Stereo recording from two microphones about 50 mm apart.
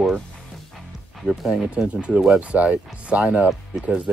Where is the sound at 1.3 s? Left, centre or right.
Centre.